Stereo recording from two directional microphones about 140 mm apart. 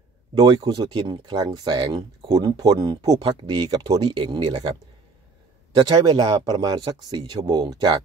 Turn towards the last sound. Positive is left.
turn(degrees=-30)  # may be behind; listen again after turning